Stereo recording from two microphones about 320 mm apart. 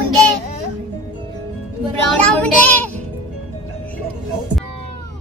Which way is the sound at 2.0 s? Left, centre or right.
Centre.